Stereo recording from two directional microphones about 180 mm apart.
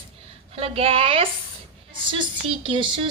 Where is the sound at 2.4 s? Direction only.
30° right (ahead or behind).